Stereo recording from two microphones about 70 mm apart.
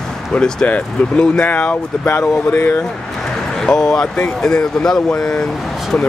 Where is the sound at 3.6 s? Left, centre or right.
Centre.